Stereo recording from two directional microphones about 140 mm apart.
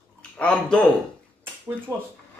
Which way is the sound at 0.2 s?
10° left (ahead or behind).